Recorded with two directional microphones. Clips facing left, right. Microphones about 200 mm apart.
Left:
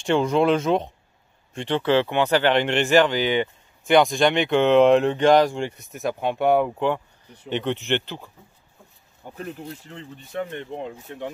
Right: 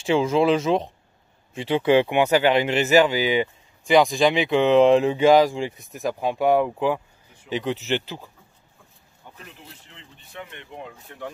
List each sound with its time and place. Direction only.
0.0 s speech: centre (ahead or behind)
9.2 s speech: 45° left (ahead or behind); by 11.3 s 25° left (ahead or behind)